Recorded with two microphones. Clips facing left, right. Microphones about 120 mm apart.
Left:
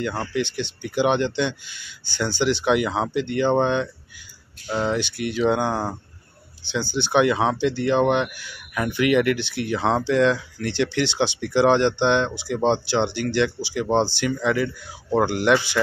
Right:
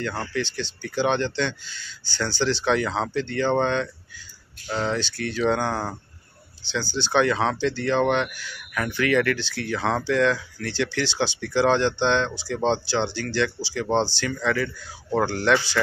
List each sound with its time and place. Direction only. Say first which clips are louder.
0.0 s speech: left 3 dB; 15° left (ahead or behind)